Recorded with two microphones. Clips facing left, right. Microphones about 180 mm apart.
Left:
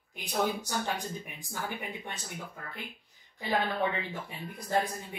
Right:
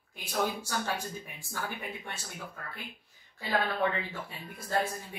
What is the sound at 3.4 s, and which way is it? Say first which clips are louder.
Speech: even; 15° left (ahead or behind).